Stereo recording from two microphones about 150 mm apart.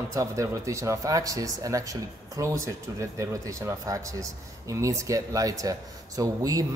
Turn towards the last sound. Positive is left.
turn(degrees=-25)  # may be behind; listen again after turning